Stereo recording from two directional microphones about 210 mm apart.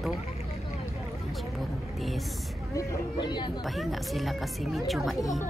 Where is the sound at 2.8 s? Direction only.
20° left (ahead or behind).